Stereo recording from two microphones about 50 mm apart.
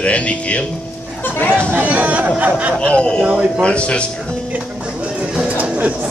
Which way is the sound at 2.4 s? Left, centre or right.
Right.